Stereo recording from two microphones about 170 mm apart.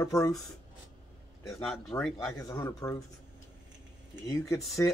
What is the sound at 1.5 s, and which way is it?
Speech, centre (ahead or behind).